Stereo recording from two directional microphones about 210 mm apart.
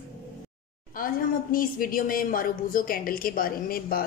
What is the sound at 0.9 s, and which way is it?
A woman's voice, 40° left (ahead or behind).